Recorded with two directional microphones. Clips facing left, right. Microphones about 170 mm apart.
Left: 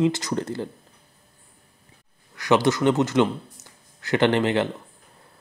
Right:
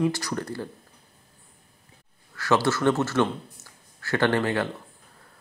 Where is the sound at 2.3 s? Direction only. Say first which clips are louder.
Left 3 dB; 20° left (ahead or behind).